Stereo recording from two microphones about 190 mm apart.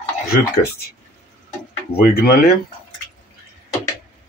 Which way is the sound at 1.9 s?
55° left (ahead or behind).